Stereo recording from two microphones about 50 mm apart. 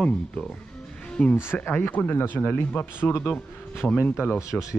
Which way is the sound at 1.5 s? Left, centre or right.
Left.